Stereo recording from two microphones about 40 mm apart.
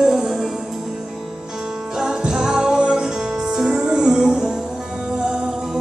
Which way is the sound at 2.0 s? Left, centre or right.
Centre.